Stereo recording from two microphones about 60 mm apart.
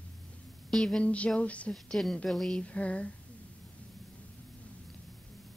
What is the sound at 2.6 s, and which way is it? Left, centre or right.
Speech, left.